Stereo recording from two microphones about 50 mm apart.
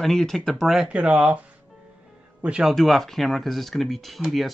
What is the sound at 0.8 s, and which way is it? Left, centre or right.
Speech, right.